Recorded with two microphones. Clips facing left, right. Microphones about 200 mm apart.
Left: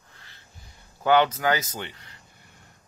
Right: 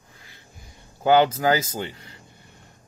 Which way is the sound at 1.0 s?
30° right (ahead or behind).